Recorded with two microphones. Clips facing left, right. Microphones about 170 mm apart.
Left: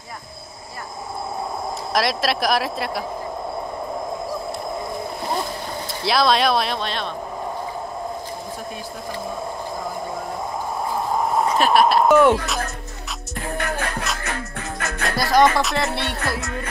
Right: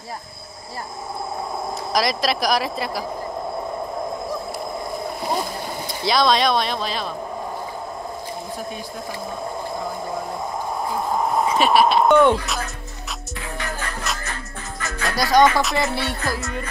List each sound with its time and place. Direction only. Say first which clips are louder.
2.0 s speech: even; centre (ahead or behind)
6.0 s speech: even; centre (ahead or behind)
11.4 s speech: even; centre (ahead or behind)
13.6 s music: left 4 dB; 65° left (ahead or behind)
15.0 s speech: right 1 dB; centre (ahead or behind)